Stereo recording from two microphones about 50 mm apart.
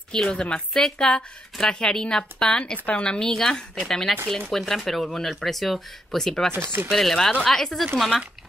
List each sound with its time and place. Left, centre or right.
0.1 s a woman's voice: centre
6.5 s chopping: right
6.9 s a woman's voice: centre